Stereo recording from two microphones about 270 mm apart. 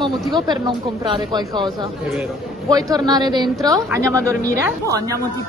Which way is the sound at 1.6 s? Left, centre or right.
Centre.